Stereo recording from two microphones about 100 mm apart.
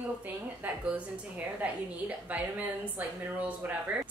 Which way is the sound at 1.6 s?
15° right (ahead or behind).